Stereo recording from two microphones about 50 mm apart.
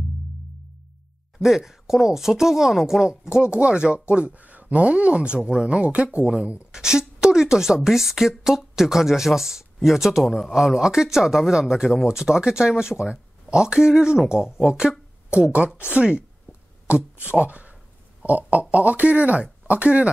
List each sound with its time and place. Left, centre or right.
1.4 s speech: centre
3.1 s a woman's voice: centre
10.5 s speech: centre
15.4 s speech: right